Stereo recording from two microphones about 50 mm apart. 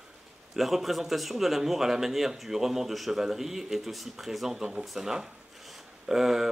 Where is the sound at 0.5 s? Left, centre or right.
Centre.